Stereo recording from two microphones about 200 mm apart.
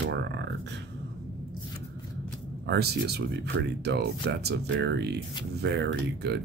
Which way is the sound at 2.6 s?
55° right (ahead or behind).